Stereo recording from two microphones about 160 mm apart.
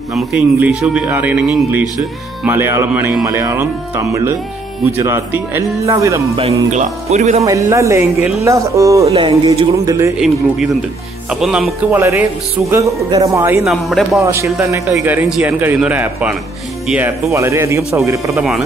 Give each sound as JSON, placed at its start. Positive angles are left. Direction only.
{"t": 0.1, "sound": "a man's voice", "side_deg": -10}
{"t": 6.7, "sound": "speech", "side_deg": -45}
{"t": 7.4, "sound": "a man's voice", "side_deg": -20}
{"t": 9.0, "sound": "speech", "side_deg": -40}
{"t": 9.8, "sound": "speech", "side_deg": -20}
{"t": 10.1, "sound": "a man's voice", "side_deg": 0}
{"t": 13.7, "sound": "speech", "side_deg": 0}
{"t": 14.2, "sound": "a man's voice", "side_deg": -20}
{"t": 17.3, "sound": "a man's voice", "side_deg": -20}